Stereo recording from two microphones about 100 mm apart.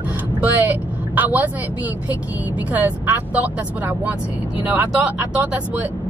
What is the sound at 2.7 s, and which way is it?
Speech, 15° right (ahead or behind).